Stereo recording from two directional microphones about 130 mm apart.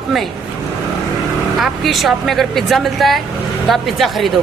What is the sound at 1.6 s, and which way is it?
A woman's voice, centre (ahead or behind).